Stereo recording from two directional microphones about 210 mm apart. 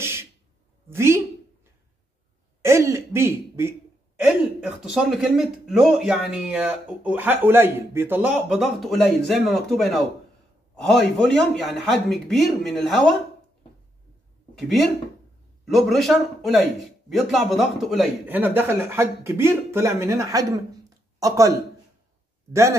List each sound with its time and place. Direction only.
0.0 s a sound: 10° right (ahead or behind)
2.6 s throat clearing: 10° right (ahead or behind)
4.3 s speech: 5° right (ahead or behind)
14.6 s a man's voice: centre (ahead or behind)